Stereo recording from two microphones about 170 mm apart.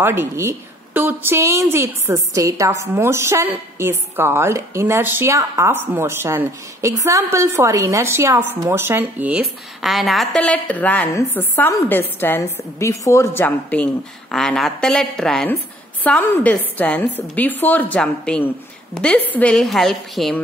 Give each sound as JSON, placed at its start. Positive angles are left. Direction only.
{"t": 0.0, "sound": "a woman's voice", "side_deg": -15}